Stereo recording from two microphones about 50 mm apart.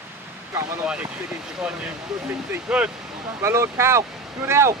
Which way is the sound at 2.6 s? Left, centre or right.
Right.